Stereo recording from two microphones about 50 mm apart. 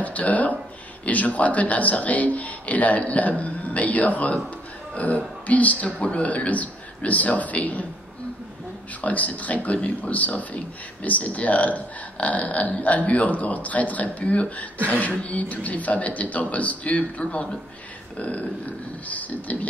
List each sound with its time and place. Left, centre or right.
0.0 s speech: left
9.0 s speech: left